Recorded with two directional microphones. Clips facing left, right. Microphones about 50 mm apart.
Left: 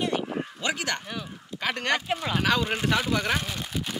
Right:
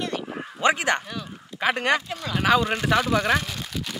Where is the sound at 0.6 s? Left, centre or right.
Right.